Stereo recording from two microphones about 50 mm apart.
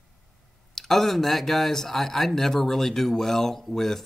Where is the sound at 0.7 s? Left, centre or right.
Centre.